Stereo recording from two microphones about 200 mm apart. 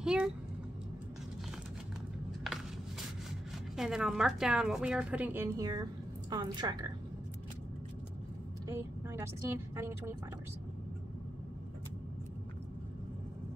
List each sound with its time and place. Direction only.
0.0 s a sound: 5° right (ahead or behind)
3.7 s a woman's voice: centre (ahead or behind); by 6.9 s 20° right (ahead or behind)
8.6 s a woman's voice: 10° right (ahead or behind)